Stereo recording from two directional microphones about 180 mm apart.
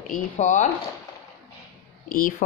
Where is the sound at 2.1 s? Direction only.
50° left (ahead or behind).